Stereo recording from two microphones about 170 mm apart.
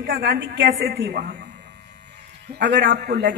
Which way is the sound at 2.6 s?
75° right (ahead or behind).